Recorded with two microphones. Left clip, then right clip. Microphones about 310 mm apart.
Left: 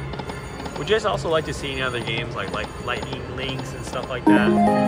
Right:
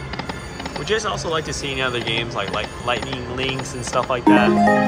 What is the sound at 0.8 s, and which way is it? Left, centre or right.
Speech, centre.